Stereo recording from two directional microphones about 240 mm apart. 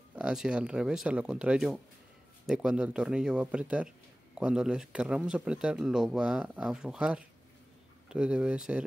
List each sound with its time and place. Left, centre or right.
0.1 s speech: centre